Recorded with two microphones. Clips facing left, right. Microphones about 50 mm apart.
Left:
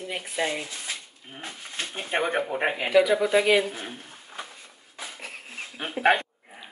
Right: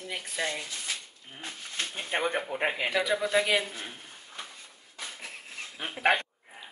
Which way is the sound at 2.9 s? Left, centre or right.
Centre.